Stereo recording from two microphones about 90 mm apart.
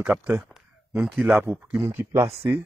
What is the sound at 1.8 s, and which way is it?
Speech, 30° right (ahead or behind).